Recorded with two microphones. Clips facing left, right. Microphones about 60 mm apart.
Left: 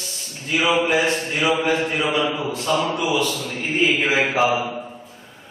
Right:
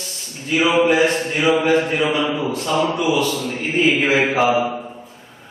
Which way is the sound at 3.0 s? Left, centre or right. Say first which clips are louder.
Right 3 dB; centre.